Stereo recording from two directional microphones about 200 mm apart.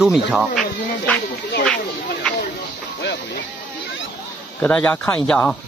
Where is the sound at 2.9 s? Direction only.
60° left (ahead or behind).